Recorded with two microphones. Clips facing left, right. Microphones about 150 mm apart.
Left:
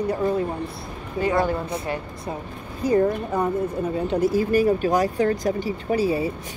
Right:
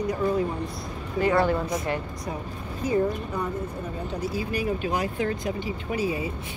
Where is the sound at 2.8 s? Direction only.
35° left (ahead or behind).